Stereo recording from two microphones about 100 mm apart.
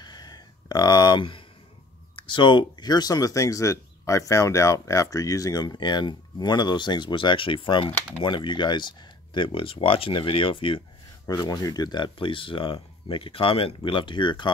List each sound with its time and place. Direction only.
0.0 s a sound: 45° left (ahead or behind)
2.1 s speech: 55° left (ahead or behind)
11.2 s speech: 40° left (ahead or behind)